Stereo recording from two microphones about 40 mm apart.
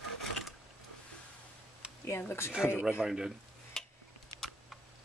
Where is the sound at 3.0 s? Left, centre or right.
Centre.